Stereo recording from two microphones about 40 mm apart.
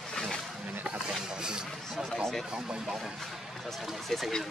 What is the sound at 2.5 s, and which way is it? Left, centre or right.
Speech, centre.